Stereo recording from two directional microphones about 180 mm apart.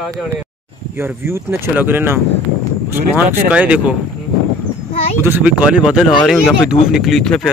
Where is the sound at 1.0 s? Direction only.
15° right (ahead or behind).